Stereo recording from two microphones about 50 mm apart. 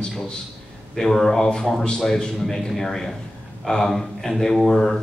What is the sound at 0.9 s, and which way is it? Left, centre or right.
A man's voice, centre.